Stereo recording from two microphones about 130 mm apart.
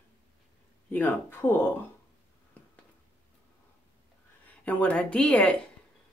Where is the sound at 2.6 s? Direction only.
10° left (ahead or behind).